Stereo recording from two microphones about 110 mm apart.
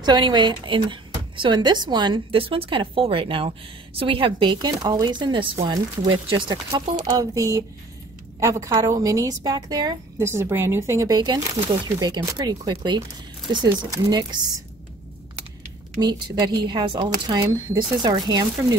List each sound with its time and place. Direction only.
0.0 s speech: 40° right (ahead or behind)
7.1 s a woman's voice: 35° right (ahead or behind)
10.1 s a woman's voice: 25° right (ahead or behind); by 14.5 s 40° right (ahead or behind)
16.0 s a woman's voice: 40° right (ahead or behind)